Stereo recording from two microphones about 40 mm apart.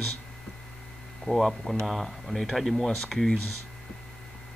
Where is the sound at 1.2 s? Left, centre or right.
Centre.